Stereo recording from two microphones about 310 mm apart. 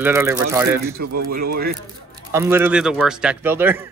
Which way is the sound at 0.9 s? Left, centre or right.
Right.